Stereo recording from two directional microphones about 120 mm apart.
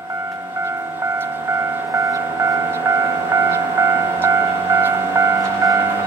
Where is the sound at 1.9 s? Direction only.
25° right (ahead or behind).